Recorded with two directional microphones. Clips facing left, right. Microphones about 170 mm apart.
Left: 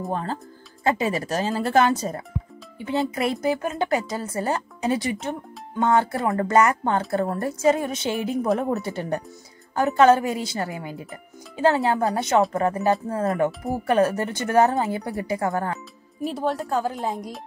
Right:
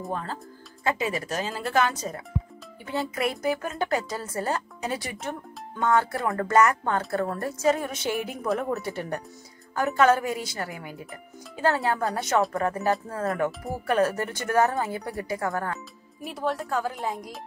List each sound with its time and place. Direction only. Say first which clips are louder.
0.1 s speech: left 4 dB; 30° left (ahead or behind)
2.8 s a woman's voice: left 4 dB; 20° left (ahead or behind)